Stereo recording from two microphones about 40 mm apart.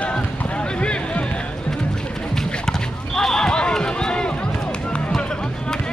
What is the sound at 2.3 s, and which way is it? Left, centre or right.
Run, centre.